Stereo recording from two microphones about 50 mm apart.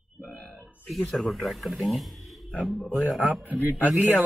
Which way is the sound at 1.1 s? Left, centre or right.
Centre.